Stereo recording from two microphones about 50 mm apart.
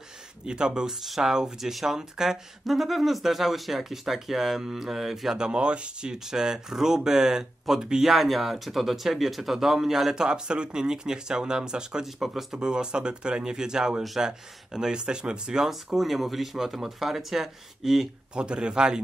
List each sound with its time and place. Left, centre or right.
0.5 s speech: centre
1.0 s speech: centre
5.4 s speech: centre
12.5 s speech: centre
15.7 s speech: centre
18.3 s speech: centre